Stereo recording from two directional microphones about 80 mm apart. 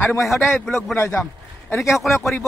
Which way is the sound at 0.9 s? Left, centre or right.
Left.